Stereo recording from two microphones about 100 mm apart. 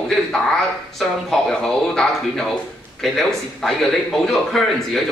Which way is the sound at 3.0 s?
5° left (ahead or behind).